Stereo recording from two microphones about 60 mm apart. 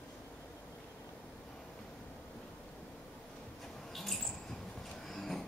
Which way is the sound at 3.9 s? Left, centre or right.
Centre.